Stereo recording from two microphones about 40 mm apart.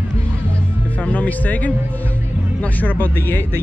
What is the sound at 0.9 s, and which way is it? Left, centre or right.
Speech, left.